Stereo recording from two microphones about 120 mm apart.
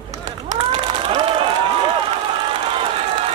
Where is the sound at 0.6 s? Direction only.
50° right (ahead or behind).